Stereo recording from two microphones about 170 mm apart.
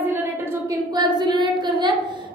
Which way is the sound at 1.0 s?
25° right (ahead or behind).